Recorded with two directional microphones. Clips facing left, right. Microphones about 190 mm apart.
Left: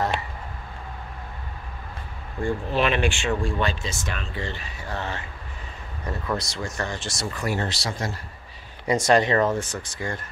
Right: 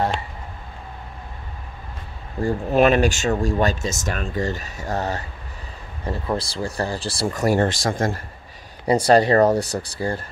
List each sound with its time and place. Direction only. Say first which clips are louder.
2.4 s speech: right 6 dB; 45° right (ahead or behind)
6.0 s speech: right 4 dB; 30° right (ahead or behind); by 8.2 s 50° right (ahead or behind)
8.8 s speech: right 4 dB; 35° right (ahead or behind)